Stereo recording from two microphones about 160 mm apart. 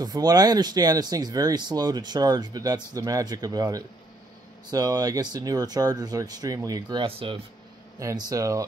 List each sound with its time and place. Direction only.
0.0 s speech: 25° right (ahead or behind)
8.0 s speech: 20° right (ahead or behind)